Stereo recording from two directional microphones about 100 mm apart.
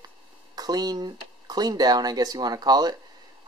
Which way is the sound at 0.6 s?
40° right (ahead or behind).